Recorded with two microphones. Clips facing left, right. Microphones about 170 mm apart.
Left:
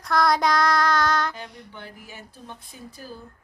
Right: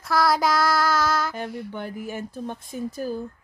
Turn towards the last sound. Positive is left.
turn(degrees=-50)  # may be behind; listen again after turning